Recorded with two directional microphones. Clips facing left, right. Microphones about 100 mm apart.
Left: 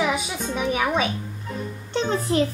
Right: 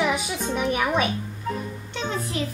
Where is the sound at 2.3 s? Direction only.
35° left (ahead or behind).